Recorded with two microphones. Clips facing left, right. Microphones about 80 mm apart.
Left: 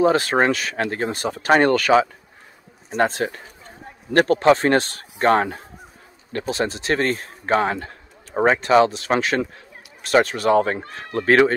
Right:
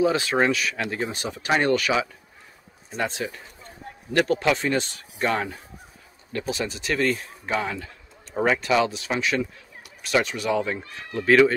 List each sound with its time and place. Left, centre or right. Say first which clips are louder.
0.0 s a man's voice: left 4 dB; left
4.6 s a man's voice: left 7 dB; left